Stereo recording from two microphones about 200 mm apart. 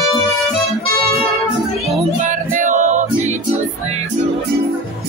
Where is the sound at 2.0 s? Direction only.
40° right (ahead or behind).